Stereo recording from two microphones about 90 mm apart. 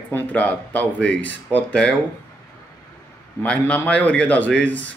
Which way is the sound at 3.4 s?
15° left (ahead or behind).